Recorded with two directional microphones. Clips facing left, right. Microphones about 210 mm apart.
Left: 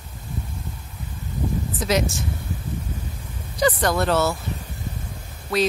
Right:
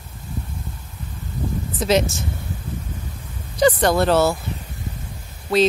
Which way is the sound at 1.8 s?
25° right (ahead or behind).